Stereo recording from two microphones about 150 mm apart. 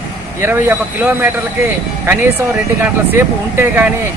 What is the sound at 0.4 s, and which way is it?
Speech, 15° right (ahead or behind).